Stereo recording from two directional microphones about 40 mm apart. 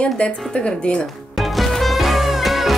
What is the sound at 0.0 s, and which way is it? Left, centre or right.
A woman's voice, left.